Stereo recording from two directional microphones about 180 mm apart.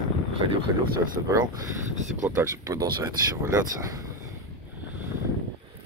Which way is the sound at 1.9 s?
40° right (ahead or behind).